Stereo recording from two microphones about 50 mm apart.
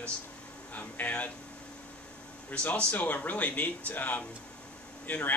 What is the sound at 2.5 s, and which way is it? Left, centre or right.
Speech, left.